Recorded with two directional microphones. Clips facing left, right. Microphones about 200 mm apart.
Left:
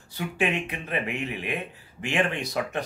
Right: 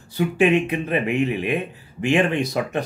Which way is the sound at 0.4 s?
20° right (ahead or behind).